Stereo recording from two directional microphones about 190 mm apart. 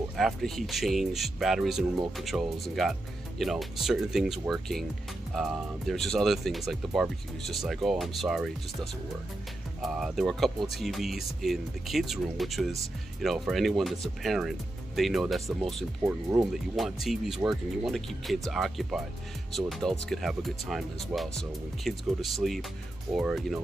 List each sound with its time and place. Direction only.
0.2 s speech: centre (ahead or behind)
9.8 s speech: centre (ahead or behind)
16.0 s speech: 15° right (ahead or behind)
16.7 s speech: centre (ahead or behind)